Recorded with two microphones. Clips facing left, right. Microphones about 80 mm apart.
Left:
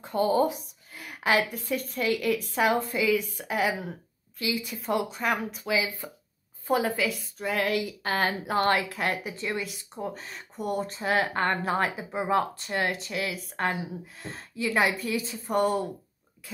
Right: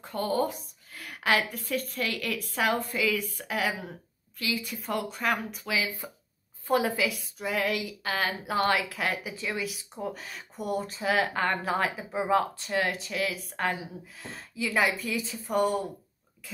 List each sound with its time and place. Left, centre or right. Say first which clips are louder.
0.0 s speech: left 4 dB; centre
8.0 s speech: left 3 dB; left
8.9 s speech: left 2 dB; centre
11.3 s speech: left 1 dB; left
11.8 s speech: left 1 dB; centre